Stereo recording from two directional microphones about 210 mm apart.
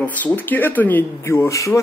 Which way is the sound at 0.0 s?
5° left (ahead or behind).